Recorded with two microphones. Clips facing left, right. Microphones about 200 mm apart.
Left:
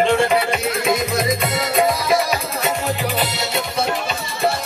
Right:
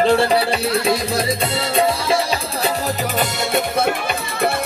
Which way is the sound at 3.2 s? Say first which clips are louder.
Right 3 dB; 55° right (ahead or behind).